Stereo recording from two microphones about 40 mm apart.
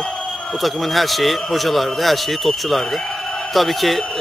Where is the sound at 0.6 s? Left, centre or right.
Centre.